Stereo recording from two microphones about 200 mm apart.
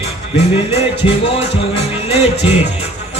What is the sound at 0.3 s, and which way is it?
Music, 30° left (ahead or behind).